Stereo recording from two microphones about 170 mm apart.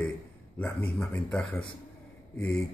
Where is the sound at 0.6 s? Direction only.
10° left (ahead or behind).